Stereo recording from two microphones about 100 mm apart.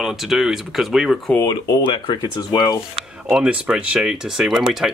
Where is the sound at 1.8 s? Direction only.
50° left (ahead or behind).